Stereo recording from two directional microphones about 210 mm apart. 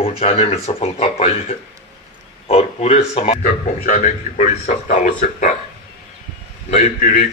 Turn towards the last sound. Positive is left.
turn(degrees=35)  # may be behind; listen again after turning